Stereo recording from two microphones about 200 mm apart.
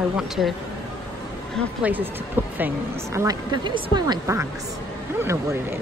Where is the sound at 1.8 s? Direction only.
10° right (ahead or behind).